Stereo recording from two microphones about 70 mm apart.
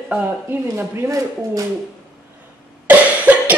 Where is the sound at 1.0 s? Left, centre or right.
Right.